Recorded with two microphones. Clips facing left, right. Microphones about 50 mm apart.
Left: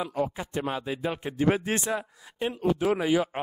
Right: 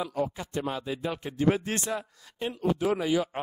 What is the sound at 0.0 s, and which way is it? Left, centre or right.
Speech, left.